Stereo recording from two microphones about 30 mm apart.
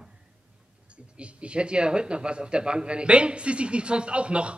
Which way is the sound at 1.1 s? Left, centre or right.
Right.